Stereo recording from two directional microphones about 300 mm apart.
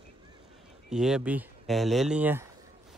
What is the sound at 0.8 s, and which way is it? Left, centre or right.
Speech, centre.